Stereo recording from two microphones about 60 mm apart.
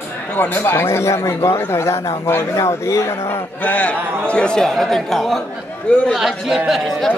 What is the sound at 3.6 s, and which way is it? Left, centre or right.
A man's voice, left.